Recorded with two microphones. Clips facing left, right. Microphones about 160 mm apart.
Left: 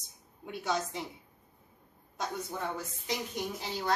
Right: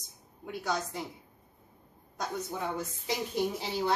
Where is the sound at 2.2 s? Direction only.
5° right (ahead or behind).